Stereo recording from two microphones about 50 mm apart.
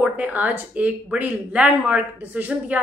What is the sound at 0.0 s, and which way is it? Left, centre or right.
Speech, right.